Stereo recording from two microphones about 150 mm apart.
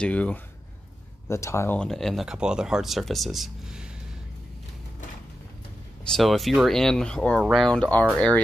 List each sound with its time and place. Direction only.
0.0 s speech: 10° left (ahead or behind)
1.8 s speech: centre (ahead or behind)
6.1 s speech: centre (ahead or behind)